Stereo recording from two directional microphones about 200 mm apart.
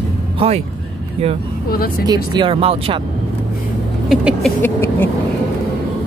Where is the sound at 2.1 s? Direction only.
25° right (ahead or behind).